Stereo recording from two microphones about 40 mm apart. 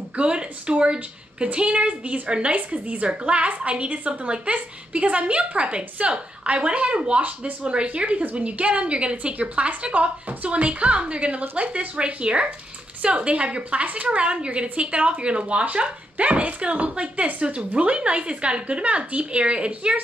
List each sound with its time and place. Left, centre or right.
0.1 s a woman's voice: right